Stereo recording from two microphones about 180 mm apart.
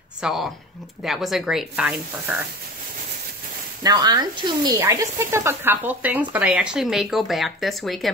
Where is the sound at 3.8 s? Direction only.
20° right (ahead or behind); by 8.1 s centre (ahead or behind).